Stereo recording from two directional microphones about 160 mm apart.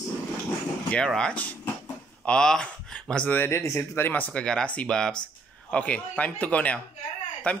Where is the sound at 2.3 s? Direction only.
5° left (ahead or behind).